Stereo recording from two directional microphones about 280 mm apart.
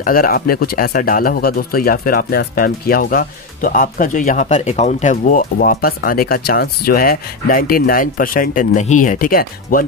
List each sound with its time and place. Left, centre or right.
0.0 s speech: left